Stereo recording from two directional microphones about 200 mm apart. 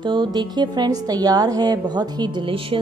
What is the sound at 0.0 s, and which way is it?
A woman's voice, 25° right (ahead or behind).